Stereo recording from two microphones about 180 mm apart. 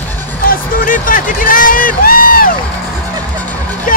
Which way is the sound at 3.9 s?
50° left (ahead or behind).